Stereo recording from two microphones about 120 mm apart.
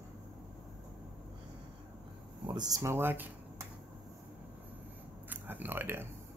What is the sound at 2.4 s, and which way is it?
Speech, 35° right (ahead or behind).